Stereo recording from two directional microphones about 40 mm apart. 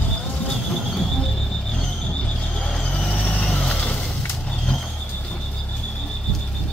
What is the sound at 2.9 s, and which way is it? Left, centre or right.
Vehicle, left.